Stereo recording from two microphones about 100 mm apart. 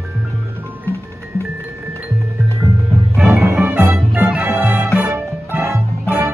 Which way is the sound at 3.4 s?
25° right (ahead or behind).